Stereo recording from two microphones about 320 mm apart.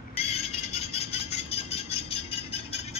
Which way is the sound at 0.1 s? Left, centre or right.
Centre.